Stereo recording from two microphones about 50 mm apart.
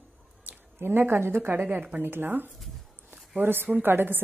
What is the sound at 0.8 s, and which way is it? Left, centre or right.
Speech, right.